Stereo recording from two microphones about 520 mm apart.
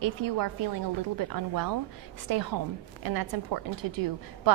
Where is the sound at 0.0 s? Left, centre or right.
Right.